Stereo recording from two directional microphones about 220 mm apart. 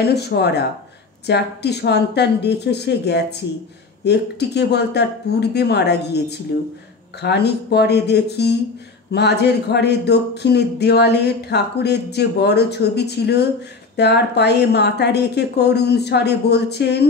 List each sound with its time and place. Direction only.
0.0 s speech: 50° left (ahead or behind)